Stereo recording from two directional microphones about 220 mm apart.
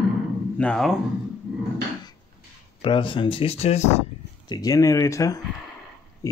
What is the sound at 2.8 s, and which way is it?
Speech, 25° left (ahead or behind).